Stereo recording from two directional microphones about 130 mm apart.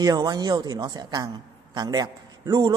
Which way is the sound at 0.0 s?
30° right (ahead or behind).